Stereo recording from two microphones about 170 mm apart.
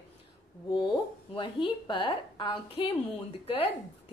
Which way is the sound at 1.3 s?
30° left (ahead or behind).